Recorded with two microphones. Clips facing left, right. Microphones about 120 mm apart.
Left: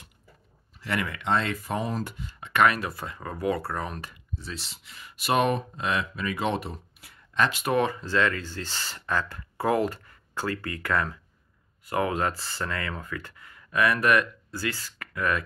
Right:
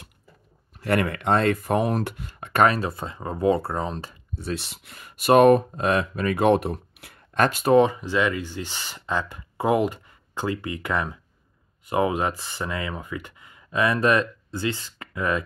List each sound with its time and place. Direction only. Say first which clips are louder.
0.7 s speech: right 7 dB; 50° right (ahead or behind)
2.5 s speech: right 3 dB; 35° right (ahead or behind)
4.4 s speech: right 12 dB; 60° right (ahead or behind)
7.6 s speech: right 7 dB; 20° right (ahead or behind)